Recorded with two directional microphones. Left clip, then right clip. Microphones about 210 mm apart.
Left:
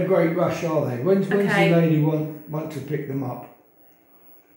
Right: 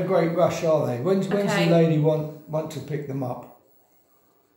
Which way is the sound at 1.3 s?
55° right (ahead or behind).